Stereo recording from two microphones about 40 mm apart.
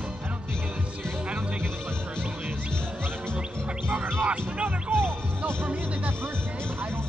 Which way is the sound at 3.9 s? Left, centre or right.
Right.